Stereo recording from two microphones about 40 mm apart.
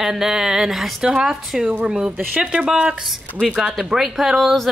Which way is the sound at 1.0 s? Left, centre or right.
Right.